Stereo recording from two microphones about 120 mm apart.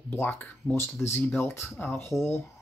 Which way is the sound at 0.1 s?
15° left (ahead or behind).